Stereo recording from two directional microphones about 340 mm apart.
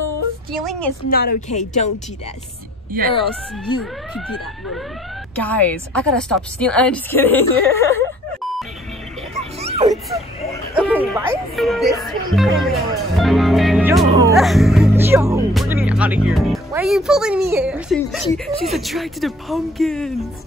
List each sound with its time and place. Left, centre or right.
0.5 s a sound: centre
1.0 s speech: left
5.3 s speech: centre
9.6 s dog: centre
10.5 s speech: centre